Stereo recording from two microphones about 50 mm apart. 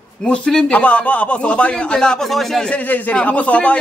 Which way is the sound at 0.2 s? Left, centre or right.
Centre.